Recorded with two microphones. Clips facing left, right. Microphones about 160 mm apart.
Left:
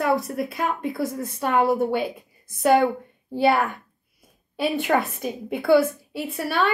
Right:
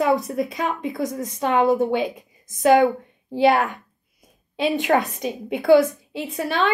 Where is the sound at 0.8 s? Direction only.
20° right (ahead or behind).